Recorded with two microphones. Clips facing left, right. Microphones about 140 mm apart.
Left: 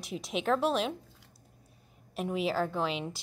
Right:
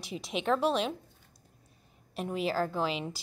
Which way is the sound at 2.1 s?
Centre (ahead or behind).